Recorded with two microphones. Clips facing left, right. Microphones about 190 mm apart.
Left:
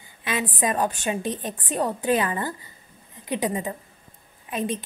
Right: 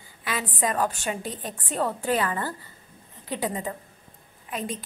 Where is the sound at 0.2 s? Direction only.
20° left (ahead or behind).